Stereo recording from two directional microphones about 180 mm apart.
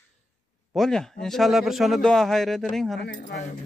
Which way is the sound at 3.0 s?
50° left (ahead or behind).